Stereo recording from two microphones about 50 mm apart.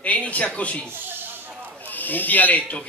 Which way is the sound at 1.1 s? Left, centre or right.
Right.